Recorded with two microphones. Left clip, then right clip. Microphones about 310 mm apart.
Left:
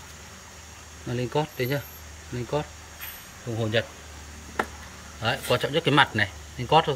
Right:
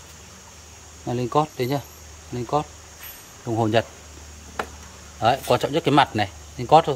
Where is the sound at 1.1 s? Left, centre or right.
Centre.